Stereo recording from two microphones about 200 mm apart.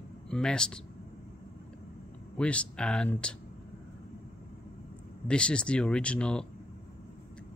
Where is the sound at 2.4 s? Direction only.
5° left (ahead or behind).